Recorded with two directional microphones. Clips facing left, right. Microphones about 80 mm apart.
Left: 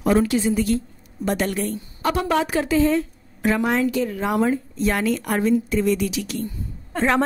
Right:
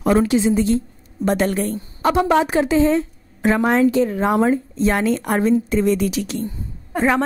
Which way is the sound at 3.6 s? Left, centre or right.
Right.